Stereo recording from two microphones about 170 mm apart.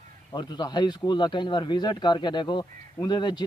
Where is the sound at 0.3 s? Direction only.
25° left (ahead or behind).